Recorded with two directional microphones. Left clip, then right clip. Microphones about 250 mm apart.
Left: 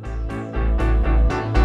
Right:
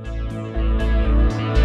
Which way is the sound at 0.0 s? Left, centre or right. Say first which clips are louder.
Left 1 dB; centre.